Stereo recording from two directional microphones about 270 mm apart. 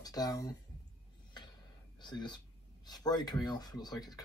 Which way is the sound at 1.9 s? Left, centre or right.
Centre.